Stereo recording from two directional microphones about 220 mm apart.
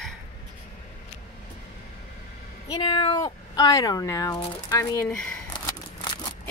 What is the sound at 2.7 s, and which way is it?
Speech, 20° left (ahead or behind).